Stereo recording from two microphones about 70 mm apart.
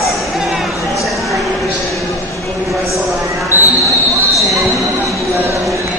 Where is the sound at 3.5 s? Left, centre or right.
Right.